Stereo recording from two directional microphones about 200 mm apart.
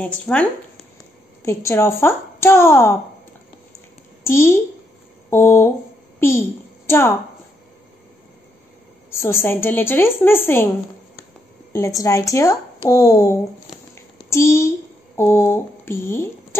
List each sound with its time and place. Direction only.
0.0 s speech: 5° left (ahead or behind)
4.2 s a woman's voice: 15° left (ahead or behind)
9.1 s speech: 10° left (ahead or behind)
11.7 s speech: 15° left (ahead or behind)
13.9 s a sound: 15° left (ahead or behind)
15.1 s speech: 15° left (ahead or behind)